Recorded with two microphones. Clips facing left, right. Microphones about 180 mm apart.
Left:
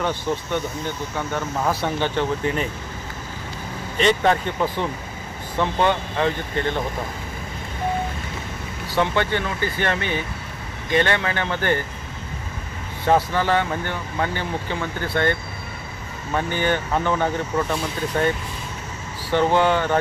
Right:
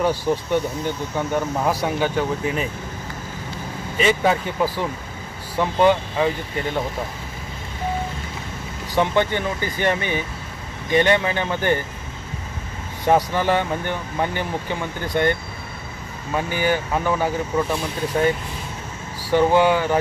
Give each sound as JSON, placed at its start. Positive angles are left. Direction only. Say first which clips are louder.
{"t": 0.0, "sound": "speech", "louder": "right 4 dB", "side_deg": -10}
{"t": 4.0, "sound": "speech", "louder": "even", "side_deg": -5}
{"t": 8.9, "sound": "speech", "louder": "right 2 dB", "side_deg": -15}
{"t": 13.0, "sound": "speech", "louder": "right 1 dB", "side_deg": -15}
{"t": 16.3, "sound": "speech", "louder": "right 1 dB", "side_deg": -10}
{"t": 19.3, "sound": "speech", "louder": "right 2 dB", "side_deg": -10}